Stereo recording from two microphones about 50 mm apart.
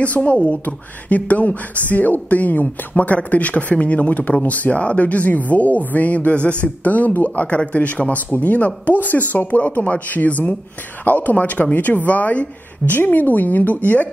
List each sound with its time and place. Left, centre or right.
0.0 s speech: left